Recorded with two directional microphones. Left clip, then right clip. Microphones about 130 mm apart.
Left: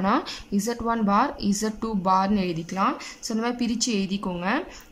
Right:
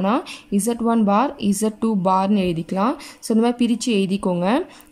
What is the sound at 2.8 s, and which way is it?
A woman's voice, 40° right (ahead or behind).